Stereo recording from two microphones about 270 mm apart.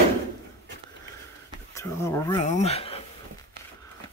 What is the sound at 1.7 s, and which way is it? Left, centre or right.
Speech, centre.